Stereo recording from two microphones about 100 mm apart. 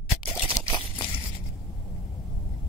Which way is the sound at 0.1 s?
30° left (ahead or behind).